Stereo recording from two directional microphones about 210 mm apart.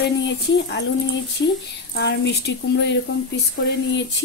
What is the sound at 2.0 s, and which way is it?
Speech, 55° left (ahead or behind).